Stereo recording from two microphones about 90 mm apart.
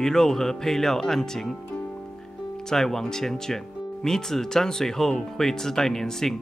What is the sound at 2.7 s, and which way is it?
Speech, 5° left (ahead or behind).